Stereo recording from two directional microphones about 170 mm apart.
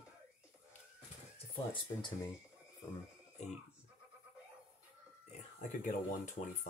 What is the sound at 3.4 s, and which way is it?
Sheep, 40° left (ahead or behind).